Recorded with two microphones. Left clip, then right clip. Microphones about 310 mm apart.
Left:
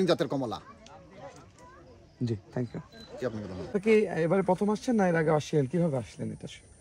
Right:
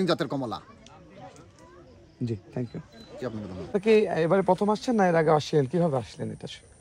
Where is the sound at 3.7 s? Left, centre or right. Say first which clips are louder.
Right 3 dB; right.